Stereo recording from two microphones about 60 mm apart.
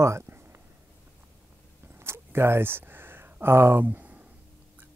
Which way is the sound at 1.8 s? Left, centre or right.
Right.